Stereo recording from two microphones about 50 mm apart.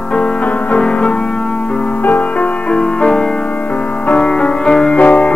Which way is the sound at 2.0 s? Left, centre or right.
Left.